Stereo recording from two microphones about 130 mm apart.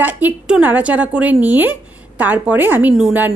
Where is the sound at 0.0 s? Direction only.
15° right (ahead or behind).